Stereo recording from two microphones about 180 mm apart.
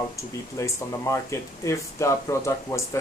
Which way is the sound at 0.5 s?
15° left (ahead or behind).